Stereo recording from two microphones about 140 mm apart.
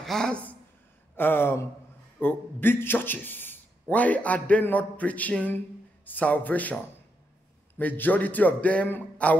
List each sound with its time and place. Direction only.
0.0 s a woman's voice: 5° left (ahead or behind)